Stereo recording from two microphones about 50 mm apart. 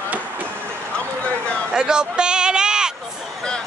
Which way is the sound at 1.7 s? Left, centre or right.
Centre.